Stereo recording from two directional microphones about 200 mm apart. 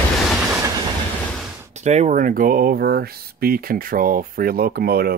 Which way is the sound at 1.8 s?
35° right (ahead or behind).